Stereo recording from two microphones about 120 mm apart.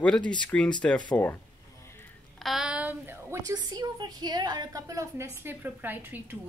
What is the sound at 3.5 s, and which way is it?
A woman's voice, 35° right (ahead or behind).